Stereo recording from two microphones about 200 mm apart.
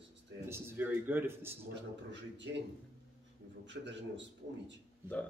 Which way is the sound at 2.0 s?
65° right (ahead or behind).